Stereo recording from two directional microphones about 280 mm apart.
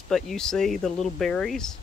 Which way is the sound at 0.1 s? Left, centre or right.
Centre.